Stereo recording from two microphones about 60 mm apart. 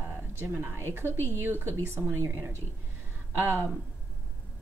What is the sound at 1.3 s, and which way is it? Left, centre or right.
A woman's voice, right.